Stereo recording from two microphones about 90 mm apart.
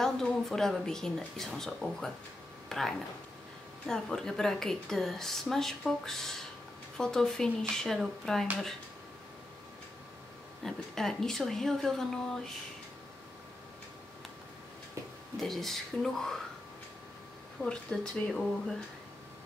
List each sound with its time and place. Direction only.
0.0 s a woman's voice: 5° left (ahead or behind)
10.6 s a woman's voice: 5° left (ahead or behind)
15.3 s a woman's voice: 5° left (ahead or behind)
17.6 s speech: 10° left (ahead or behind)